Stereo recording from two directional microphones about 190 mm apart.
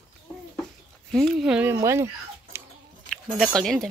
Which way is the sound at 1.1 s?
Centre (ahead or behind).